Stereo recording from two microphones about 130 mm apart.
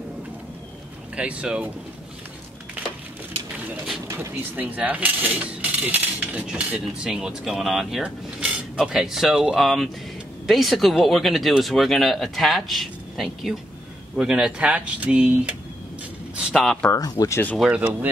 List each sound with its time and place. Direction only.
1.1 s speech: 10° right (ahead or behind)
4.1 s speech: 15° right (ahead or behind); by 16.9 s centre (ahead or behind)
16.9 s speech: 25° left (ahead or behind)
17.6 s speech: 10° right (ahead or behind)